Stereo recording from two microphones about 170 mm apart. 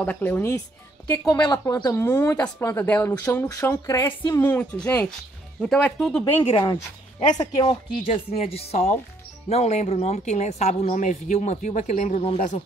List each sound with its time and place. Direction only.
0.0 s speech: 10° left (ahead or behind)
6.5 s speech: 30° left (ahead or behind)